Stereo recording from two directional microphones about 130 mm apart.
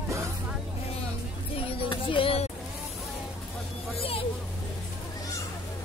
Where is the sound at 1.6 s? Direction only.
45° left (ahead or behind).